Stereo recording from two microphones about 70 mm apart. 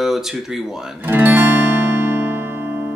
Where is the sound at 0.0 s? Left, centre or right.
Centre.